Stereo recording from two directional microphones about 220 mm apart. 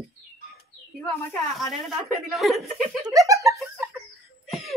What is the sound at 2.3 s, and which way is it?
Speech, centre (ahead or behind).